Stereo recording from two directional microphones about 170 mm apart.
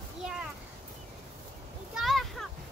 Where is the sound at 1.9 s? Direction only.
Centre (ahead or behind).